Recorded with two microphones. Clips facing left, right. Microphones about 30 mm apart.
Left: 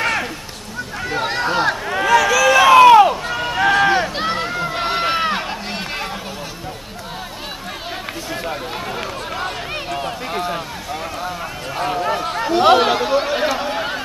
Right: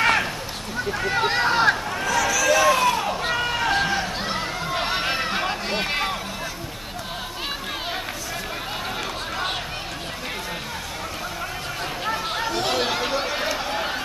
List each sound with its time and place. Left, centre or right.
0.0 s a sound: centre
0.9 s speech: centre
2.0 s run: left
3.8 s run: left
4.7 s run: centre
5.4 s run: centre
12.0 s a sound: centre
12.6 s speech: left
13.0 s a sound: centre